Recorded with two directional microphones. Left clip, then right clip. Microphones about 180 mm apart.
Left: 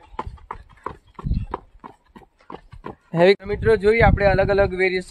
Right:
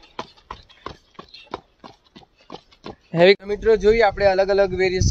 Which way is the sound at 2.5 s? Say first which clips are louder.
Left 1 dB; 10° left (ahead or behind).